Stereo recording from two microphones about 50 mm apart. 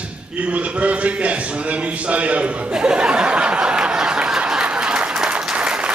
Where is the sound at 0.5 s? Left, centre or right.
Right.